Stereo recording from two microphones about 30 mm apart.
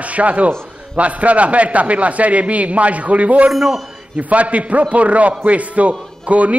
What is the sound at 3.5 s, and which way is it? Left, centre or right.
Speech, centre.